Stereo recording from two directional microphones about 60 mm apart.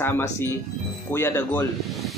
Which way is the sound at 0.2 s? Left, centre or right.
Left.